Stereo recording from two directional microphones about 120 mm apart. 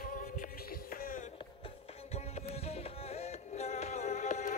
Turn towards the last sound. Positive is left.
turn(degrees=75)  # may be behind; listen again after turning